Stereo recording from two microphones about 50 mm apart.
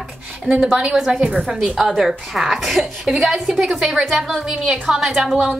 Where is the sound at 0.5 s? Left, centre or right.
Centre.